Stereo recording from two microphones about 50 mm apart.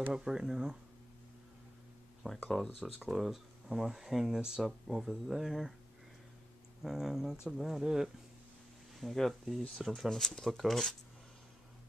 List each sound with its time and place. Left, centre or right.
0.1 s speech: centre
2.2 s speech: centre
2.8 s speech: centre
6.8 s speech: centre
9.0 s speech: centre